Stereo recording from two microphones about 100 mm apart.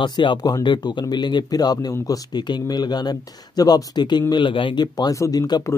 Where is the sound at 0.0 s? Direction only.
50° left (ahead or behind).